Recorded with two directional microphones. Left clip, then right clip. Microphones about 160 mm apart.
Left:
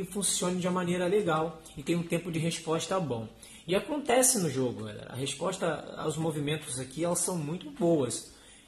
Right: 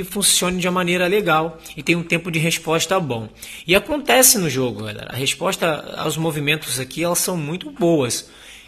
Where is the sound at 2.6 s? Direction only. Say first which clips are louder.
Right 9 dB; 20° right (ahead or behind).